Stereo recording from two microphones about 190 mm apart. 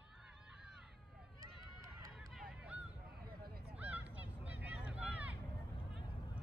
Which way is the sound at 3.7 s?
10° right (ahead or behind).